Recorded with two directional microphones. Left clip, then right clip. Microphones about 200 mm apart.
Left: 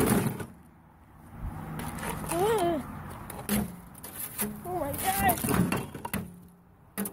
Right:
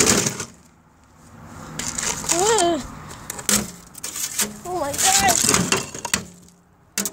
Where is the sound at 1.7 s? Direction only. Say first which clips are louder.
Right 10 dB; 10° right (ahead or behind).